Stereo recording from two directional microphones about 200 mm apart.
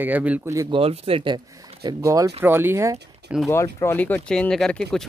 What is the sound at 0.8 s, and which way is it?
Speech, 30° right (ahead or behind).